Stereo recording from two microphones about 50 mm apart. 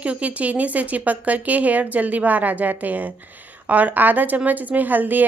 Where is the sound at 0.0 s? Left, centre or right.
Right.